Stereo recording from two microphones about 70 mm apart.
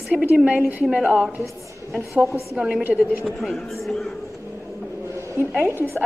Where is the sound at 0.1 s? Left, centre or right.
Centre.